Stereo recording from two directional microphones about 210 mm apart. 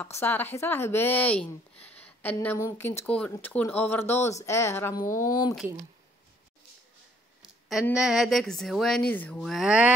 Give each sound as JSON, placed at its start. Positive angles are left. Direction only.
{"t": 0.0, "sound": "speech", "side_deg": 10}
{"t": 7.9, "sound": "speech", "side_deg": 0}